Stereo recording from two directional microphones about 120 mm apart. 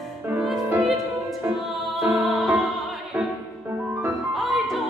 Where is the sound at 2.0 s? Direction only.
Centre (ahead or behind).